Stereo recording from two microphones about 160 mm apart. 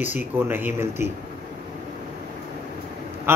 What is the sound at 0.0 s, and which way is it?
Speech, 10° right (ahead or behind).